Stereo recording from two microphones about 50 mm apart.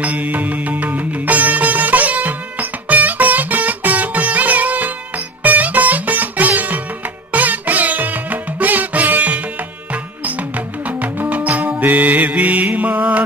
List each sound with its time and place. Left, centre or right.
0.0 s music: right
10.9 s music: right